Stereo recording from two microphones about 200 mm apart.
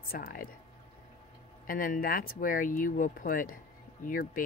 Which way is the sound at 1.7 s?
45° left (ahead or behind).